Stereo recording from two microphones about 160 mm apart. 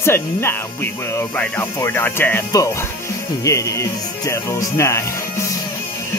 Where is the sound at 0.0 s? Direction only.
15° left (ahead or behind).